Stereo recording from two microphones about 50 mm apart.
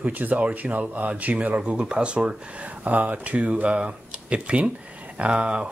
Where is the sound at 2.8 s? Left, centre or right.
Right.